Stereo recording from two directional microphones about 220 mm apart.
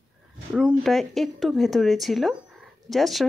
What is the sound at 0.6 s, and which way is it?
A woman's voice, centre (ahead or behind).